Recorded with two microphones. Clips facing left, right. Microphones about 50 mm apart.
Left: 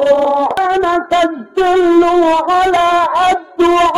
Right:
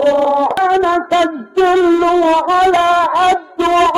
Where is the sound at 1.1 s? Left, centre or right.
Centre.